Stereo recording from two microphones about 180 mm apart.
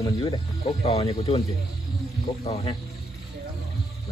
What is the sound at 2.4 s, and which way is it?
Speech, 35° left (ahead or behind).